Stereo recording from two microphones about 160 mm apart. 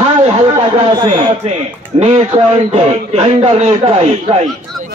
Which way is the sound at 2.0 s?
35° right (ahead or behind).